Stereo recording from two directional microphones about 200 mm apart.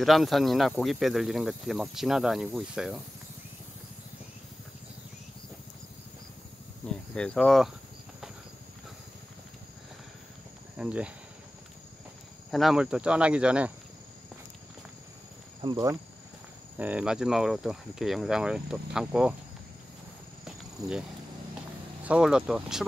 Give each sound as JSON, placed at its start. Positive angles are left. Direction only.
{"t": 0.0, "sound": "speech", "side_deg": 0}
{"t": 6.9, "sound": "cricket", "side_deg": 5}
{"t": 10.8, "sound": "speech", "side_deg": -5}
{"t": 12.4, "sound": "speech", "side_deg": 0}
{"t": 15.6, "sound": "speech", "side_deg": -20}
{"t": 16.7, "sound": "speech", "side_deg": -5}
{"t": 20.8, "sound": "speech", "side_deg": -20}
{"t": 22.0, "sound": "speech", "side_deg": -5}